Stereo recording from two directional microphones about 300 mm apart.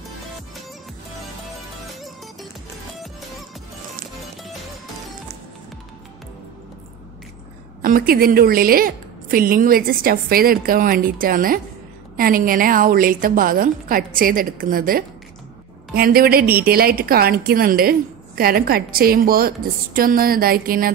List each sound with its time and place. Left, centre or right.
3.0 s music: centre
7.8 s a woman's voice: right